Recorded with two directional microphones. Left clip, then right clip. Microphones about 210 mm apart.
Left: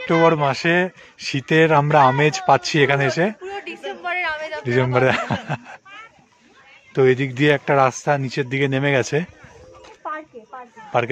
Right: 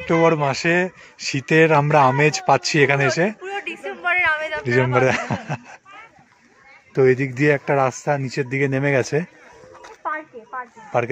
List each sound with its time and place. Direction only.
0.0 s a man's voice: centre (ahead or behind)
6.9 s speech: centre (ahead or behind)
9.8 s a sound: 15° right (ahead or behind)
10.9 s speech: centre (ahead or behind)